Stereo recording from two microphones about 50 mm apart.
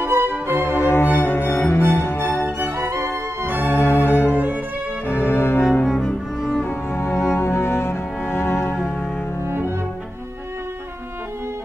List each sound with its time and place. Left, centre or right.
0.0 s music: right
0.6 s music: left
1.1 s cello: left
1.8 s music: left
3.6 s music: left
5.9 s cello: centre
6.6 s cello: left